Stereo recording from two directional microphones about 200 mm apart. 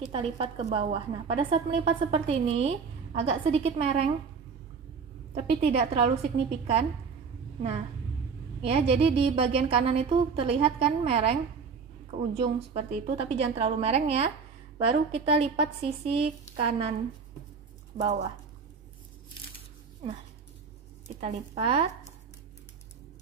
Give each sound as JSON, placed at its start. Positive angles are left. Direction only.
{"t": 0.1, "sound": "a woman's voice", "side_deg": -30}
{"t": 5.3, "sound": "a woman's voice", "side_deg": -30}
{"t": 8.6, "sound": "a woman's voice", "side_deg": -30}
{"t": 21.2, "sound": "a woman's voice", "side_deg": -35}